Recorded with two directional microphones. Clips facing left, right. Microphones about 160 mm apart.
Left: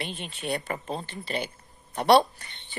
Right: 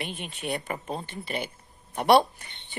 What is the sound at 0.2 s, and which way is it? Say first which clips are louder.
Speech: left 1 dB; 10° right (ahead or behind).